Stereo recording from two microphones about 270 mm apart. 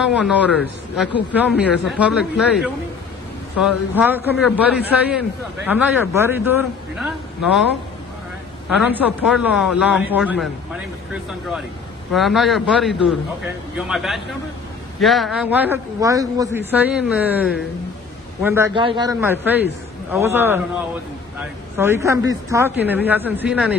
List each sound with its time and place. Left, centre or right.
0.0 s a man's voice: centre
8.6 s speech: centre
12.1 s a man's voice: centre